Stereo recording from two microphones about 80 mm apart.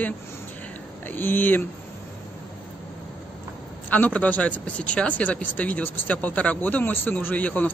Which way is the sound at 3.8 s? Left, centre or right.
Left.